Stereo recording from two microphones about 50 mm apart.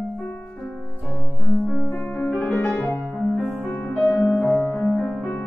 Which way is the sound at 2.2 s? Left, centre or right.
Left.